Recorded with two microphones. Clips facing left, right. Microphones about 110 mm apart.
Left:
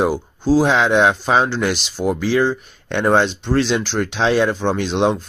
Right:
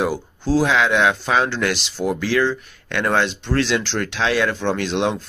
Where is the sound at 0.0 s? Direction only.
15° left (ahead or behind).